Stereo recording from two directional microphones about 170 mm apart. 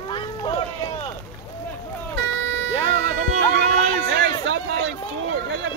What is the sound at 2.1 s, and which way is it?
Vehicle, 90° right.